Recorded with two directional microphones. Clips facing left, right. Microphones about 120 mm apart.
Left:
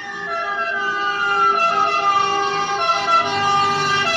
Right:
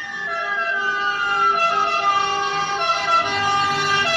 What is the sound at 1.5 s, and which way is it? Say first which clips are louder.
Emergency vehicle: left 2 dB; 35° left (ahead or behind).